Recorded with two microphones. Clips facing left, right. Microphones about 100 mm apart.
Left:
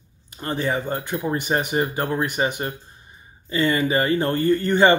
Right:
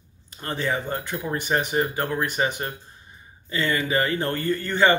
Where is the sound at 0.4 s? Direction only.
15° left (ahead or behind).